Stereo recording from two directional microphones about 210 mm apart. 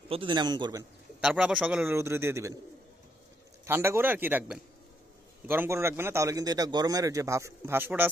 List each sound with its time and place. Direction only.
0.1 s a man's voice: 25° right (ahead or behind)
1.2 s a man's voice: 5° right (ahead or behind)
3.6 s a man's voice: 10° right (ahead or behind)